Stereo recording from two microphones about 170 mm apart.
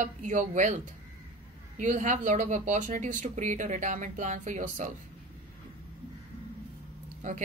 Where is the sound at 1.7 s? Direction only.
45° right (ahead or behind).